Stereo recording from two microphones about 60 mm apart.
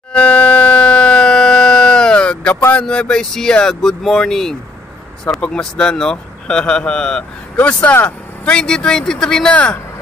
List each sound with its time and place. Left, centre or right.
0.1 s a sound: centre
2.7 s a man's voice: centre
7.5 s a man's voice: left; by 9.6 s centre